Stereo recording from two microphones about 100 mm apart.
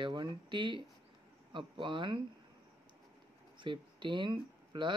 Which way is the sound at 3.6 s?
55° right (ahead or behind).